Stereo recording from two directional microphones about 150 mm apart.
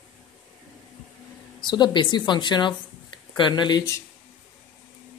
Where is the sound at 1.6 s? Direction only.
30° left (ahead or behind).